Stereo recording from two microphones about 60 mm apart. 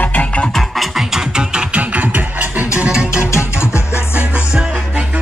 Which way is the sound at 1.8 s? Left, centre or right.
Right.